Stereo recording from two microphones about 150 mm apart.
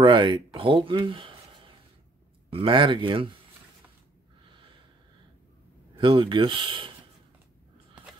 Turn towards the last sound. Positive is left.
turn(degrees=-35)  # may be behind; listen again after turning